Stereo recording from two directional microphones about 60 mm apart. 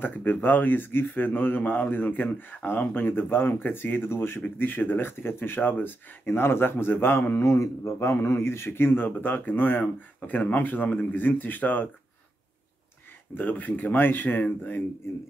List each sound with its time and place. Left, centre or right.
0.0 s speech: left
7.4 s speech: left
13.3 s speech: left